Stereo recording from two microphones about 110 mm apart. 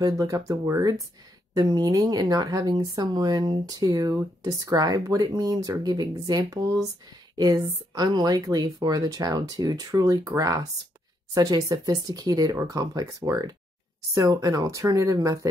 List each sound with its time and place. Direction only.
0.0 s speech: 30° right (ahead or behind)